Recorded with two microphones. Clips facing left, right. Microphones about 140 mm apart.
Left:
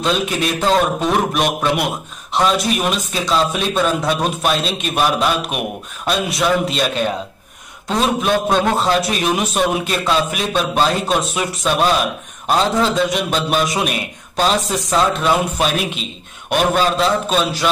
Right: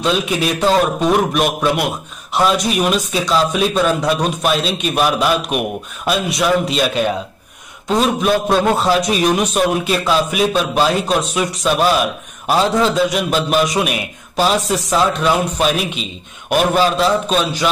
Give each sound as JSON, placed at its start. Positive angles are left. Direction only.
{"t": 0.0, "sound": "a man's voice", "side_deg": 0}